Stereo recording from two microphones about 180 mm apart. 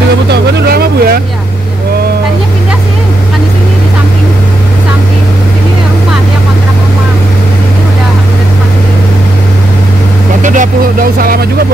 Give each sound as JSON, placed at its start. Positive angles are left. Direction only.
{"t": 0.3, "sound": "speech", "side_deg": -60}
{"t": 10.4, "sound": "speech", "side_deg": -45}